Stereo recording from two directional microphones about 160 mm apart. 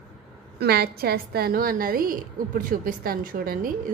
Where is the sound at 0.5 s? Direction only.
85° right.